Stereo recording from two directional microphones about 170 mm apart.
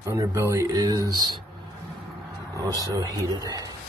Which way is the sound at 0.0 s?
15° right (ahead or behind).